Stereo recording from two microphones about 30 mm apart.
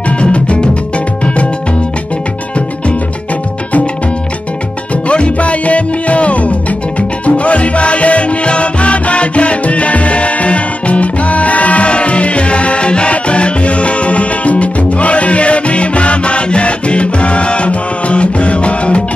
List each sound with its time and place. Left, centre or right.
0.2 s music: left
5.0 s music: left
11.9 s music: left